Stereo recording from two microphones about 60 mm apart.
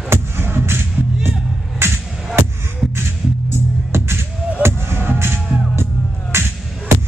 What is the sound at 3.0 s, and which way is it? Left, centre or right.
Music, right.